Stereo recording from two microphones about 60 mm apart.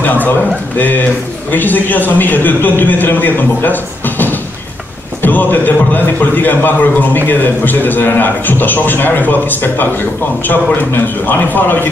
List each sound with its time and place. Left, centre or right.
0.0 s a man's voice: left